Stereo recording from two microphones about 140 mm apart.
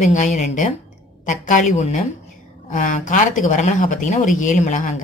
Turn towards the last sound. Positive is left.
turn(degrees=60)  # may be behind; listen again after turning